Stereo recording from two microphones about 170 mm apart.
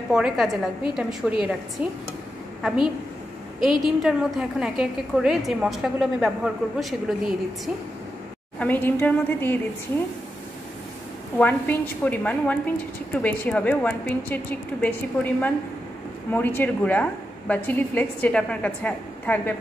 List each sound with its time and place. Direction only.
0.1 s a woman's voice: centre (ahead or behind)
8.5 s a woman's voice: 10° left (ahead or behind)
11.3 s a woman's voice: 10° left (ahead or behind)